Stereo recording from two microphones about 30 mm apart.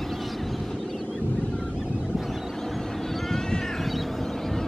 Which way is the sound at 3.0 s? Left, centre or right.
Centre.